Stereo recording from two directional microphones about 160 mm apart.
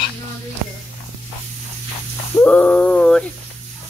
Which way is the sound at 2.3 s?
5° left (ahead or behind).